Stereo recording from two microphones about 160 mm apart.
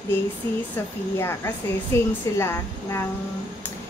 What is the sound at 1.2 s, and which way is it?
A woman's voice, 15° left (ahead or behind).